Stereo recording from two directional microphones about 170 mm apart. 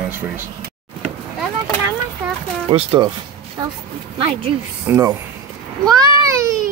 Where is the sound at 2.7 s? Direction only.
30° right (ahead or behind).